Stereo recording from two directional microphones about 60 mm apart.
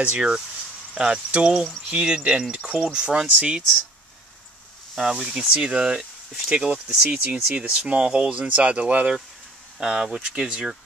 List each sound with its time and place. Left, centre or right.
0.0 s speech: centre
4.9 s speech: centre